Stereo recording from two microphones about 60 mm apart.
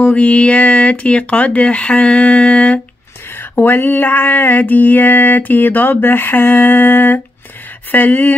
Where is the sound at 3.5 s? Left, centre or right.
Left.